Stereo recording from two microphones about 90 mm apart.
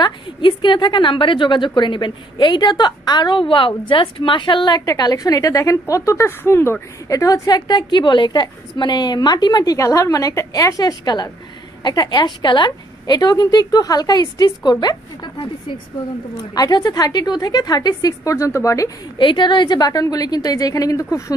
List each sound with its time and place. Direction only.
0.0 s a woman's voice: 65° left (ahead or behind)
4.8 s a woman's voice: 45° left (ahead or behind); by 6.8 s 25° left (ahead or behind)
7.1 s a woman's voice: 40° left (ahead or behind)
16.5 s a woman's voice: 45° left (ahead or behind)
19.1 s a woman's voice: 60° left (ahead or behind); by 21.4 s 40° left (ahead or behind)